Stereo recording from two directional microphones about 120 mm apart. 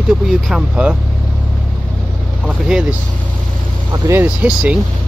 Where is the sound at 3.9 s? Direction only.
25° right (ahead or behind).